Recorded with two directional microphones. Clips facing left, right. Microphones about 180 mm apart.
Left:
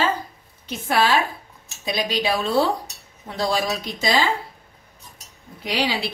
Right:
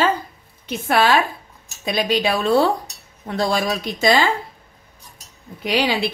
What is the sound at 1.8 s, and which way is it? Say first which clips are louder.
Speech: right 4 dB; 55° right (ahead or behind).